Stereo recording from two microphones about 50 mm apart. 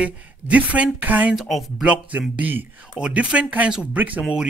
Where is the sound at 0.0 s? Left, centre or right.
Right.